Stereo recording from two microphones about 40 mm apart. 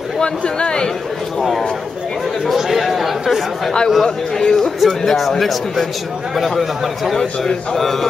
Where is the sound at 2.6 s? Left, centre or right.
Centre.